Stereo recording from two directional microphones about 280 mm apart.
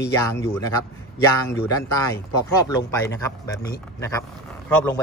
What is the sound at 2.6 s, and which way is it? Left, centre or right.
A man's voice, centre.